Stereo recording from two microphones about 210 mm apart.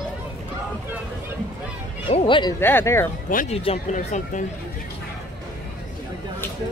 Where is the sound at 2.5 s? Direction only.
10° left (ahead or behind).